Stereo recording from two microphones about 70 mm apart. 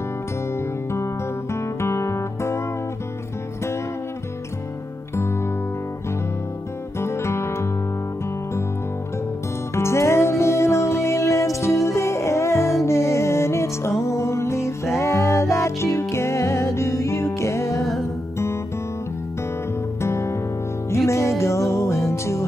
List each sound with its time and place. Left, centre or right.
0.9 s music: left
7.0 s music: left
9.8 s music: left
20.0 s music: left